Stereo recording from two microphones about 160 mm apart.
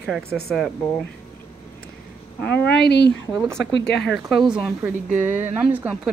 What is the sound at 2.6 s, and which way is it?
Speech, 90° left.